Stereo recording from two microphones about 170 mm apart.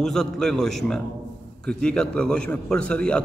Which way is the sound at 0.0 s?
Centre (ahead or behind).